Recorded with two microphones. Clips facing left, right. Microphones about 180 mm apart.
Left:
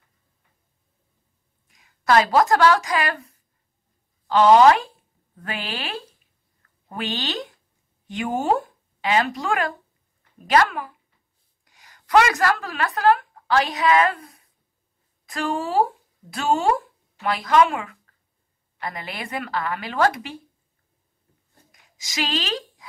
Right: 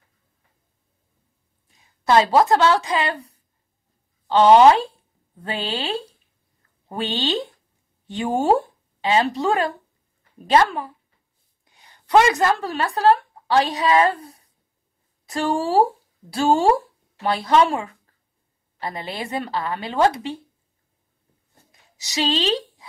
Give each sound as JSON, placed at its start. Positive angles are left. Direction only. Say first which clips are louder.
{"t": 1.7, "sound": "a woman's voice", "louder": "right 1 dB", "side_deg": -25}
{"t": 22.2, "sound": "speech", "louder": "right 5 dB", "side_deg": -25}